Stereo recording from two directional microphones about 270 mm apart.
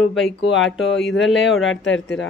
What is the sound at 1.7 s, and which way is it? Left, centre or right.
Speech, left.